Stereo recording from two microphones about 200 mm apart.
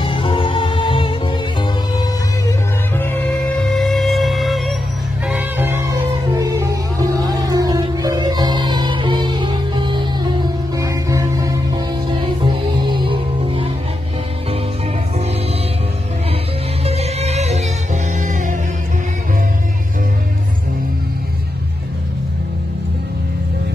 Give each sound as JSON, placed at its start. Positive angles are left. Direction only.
{"t": 0.0, "sound": "music", "side_deg": 25}
{"t": 3.0, "sound": "music", "side_deg": 10}
{"t": 5.3, "sound": "music", "side_deg": -10}
{"t": 16.8, "sound": "music", "side_deg": -30}